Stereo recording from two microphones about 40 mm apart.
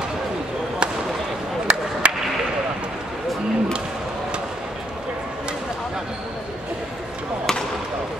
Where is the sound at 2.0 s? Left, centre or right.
Right.